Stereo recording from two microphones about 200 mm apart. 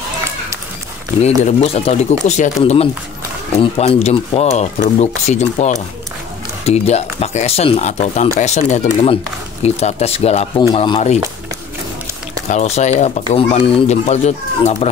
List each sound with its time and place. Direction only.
1.2 s speech: 30° left (ahead or behind)
12.4 s speech: 35° left (ahead or behind)